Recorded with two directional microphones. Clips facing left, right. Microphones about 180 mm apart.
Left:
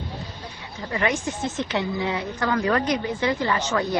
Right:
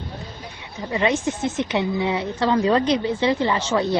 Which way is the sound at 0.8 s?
20° right (ahead or behind).